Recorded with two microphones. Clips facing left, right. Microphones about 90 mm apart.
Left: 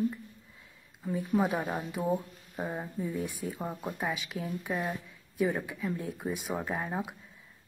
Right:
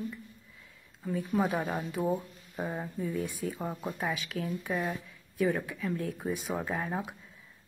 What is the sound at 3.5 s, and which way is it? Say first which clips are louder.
Speech: right 1 dB; centre (ahead or behind).